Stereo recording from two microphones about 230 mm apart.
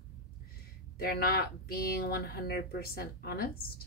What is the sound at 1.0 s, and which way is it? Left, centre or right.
Speech, left.